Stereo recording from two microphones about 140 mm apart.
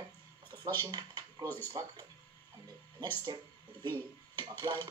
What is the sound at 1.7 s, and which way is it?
Speech, 30° right (ahead or behind).